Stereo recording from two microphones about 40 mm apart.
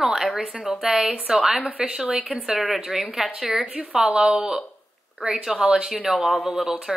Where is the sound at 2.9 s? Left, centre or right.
Centre.